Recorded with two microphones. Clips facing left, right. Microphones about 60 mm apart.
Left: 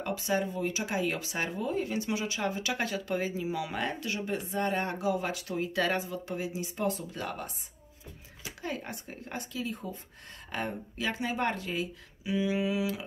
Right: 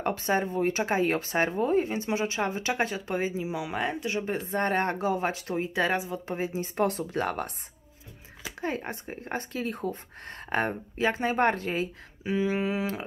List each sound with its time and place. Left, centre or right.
0.0 s speech: right
4.5 s speech: right
5.9 s speech: centre
6.2 s speech: right
8.5 s speech: right